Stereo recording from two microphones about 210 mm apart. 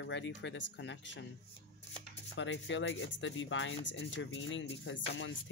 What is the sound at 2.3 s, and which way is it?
Speech, 60° left (ahead or behind).